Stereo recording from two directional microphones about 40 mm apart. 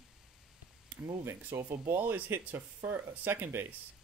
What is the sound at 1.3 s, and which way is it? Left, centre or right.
Speech, right.